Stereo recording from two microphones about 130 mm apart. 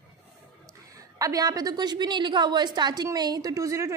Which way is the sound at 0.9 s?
25° right (ahead or behind).